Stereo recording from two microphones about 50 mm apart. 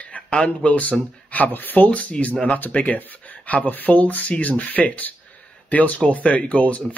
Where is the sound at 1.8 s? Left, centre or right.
Left.